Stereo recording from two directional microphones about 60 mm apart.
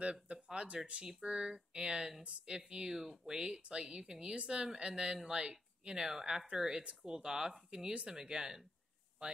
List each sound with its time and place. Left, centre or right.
0.0 s speech: centre